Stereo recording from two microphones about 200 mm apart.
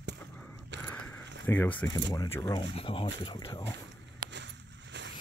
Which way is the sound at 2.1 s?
20° left (ahead or behind).